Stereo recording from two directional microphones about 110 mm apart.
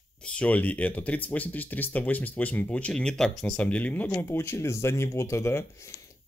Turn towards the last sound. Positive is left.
turn(degrees=25)  # may be behind; listen again after turning